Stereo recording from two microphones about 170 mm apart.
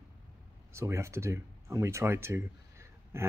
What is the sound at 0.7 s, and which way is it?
A man's voice, 15° right (ahead or behind).